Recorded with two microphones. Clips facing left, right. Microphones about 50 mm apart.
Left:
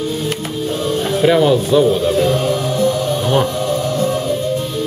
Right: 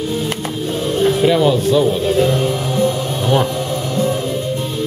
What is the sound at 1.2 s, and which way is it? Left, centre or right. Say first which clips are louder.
Speech: left 3 dB; centre.